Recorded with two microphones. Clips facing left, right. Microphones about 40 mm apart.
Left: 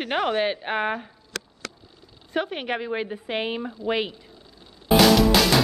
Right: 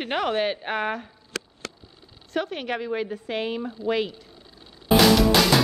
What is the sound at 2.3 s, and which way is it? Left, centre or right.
A woman's voice, centre.